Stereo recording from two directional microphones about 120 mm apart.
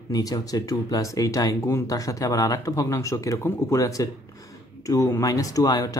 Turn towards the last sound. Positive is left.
turn(degrees=30)  # may be behind; listen again after turning